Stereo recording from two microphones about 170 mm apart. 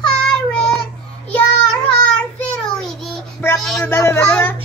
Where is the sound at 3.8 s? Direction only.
15° left (ahead or behind).